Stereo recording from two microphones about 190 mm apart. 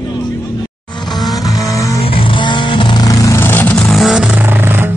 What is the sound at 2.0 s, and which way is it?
Vehicle, 25° left (ahead or behind).